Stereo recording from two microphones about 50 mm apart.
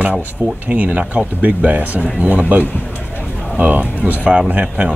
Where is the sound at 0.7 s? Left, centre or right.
Right.